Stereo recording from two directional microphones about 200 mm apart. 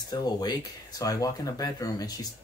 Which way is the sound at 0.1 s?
20° left (ahead or behind).